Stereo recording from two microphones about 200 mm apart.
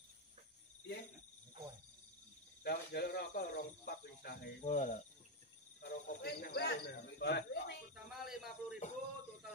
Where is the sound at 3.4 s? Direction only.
45° left (ahead or behind).